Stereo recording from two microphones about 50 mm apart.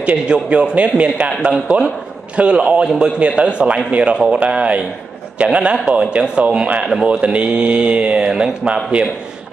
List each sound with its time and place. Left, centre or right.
0.0 s speech: right
6.8 s a man's voice: centre
7.1 s speech: right